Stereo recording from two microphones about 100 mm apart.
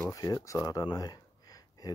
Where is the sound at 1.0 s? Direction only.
40° left (ahead or behind).